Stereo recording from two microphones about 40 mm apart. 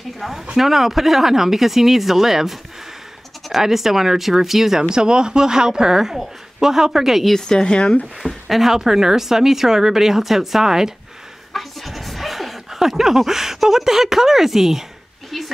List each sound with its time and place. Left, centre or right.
0.6 s speech: centre
7.3 s speech: centre
8.2 s speech: centre
11.5 s speech: centre